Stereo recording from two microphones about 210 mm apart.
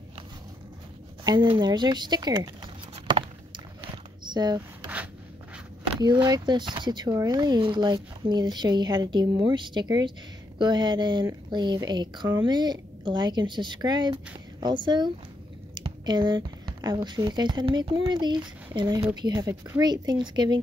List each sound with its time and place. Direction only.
1.2 s speech: 20° right (ahead or behind)
3.1 s a sound: 20° right (ahead or behind)
4.3 s speech: 20° right (ahead or behind)
5.9 s speech: 20° right (ahead or behind)